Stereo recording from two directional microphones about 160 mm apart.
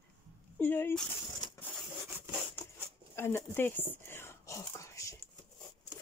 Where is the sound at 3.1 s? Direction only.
15° left (ahead or behind).